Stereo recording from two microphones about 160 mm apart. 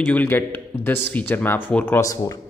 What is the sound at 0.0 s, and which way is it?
Speech, 10° left (ahead or behind).